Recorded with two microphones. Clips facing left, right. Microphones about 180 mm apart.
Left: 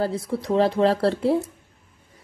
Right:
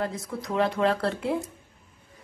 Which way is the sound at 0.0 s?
30° left (ahead or behind).